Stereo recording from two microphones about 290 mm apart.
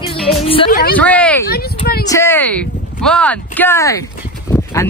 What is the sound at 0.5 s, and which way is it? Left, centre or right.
Speech, centre.